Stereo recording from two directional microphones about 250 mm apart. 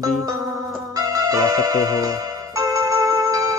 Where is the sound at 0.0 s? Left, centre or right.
Centre.